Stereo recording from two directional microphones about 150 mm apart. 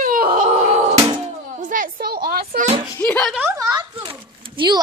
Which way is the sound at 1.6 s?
65° right (ahead or behind).